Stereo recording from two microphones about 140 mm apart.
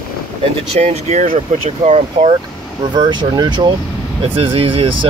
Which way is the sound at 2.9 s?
30° right (ahead or behind).